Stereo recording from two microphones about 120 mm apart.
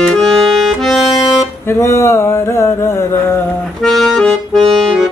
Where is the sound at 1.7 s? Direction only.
25° left (ahead or behind).